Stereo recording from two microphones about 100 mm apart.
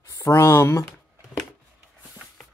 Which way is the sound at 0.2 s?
30° left (ahead or behind).